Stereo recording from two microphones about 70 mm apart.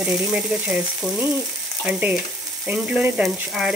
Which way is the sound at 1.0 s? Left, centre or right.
Centre.